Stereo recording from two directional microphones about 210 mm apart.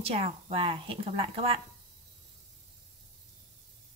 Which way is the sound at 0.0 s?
30° right (ahead or behind).